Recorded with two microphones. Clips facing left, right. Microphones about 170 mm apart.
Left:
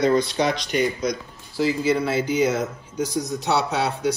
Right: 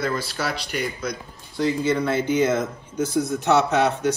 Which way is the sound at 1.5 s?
10° left (ahead or behind).